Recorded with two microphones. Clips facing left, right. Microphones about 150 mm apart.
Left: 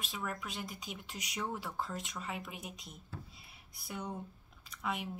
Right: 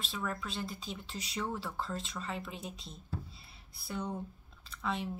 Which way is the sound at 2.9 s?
30° right (ahead or behind).